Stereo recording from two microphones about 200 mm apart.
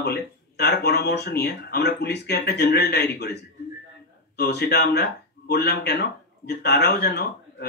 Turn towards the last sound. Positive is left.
turn(degrees=55)  # may be behind; listen again after turning